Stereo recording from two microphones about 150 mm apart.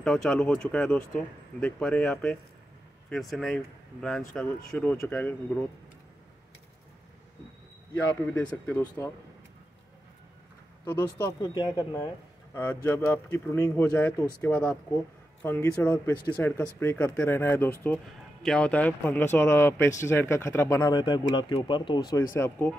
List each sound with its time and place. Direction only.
0.0 s speech: 5° left (ahead or behind)
8.3 s speech: 10° left (ahead or behind)
10.9 s speech: 15° left (ahead or behind)
22.3 s speech: 15° left (ahead or behind)